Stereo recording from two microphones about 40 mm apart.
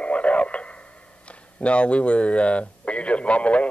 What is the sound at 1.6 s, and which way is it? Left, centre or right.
A man's voice, left.